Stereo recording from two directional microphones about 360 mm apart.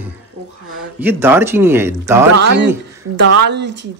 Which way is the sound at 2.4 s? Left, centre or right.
Right.